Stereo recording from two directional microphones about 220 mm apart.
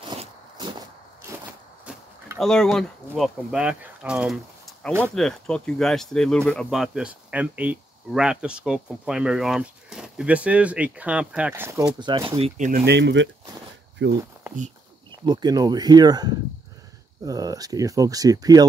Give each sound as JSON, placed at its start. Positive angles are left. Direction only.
{"t": 0.1, "sound": "a sound", "side_deg": -20}
{"t": 1.9, "sound": "speech", "side_deg": 0}
{"t": 12.8, "sound": "speech", "side_deg": -50}
{"t": 15.2, "sound": "speech", "side_deg": -15}